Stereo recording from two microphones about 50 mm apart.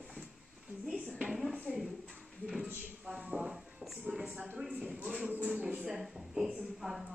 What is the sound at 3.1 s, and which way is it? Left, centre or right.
Music, right.